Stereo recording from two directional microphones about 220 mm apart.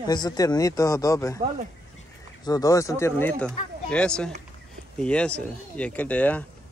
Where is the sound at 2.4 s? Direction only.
15° left (ahead or behind).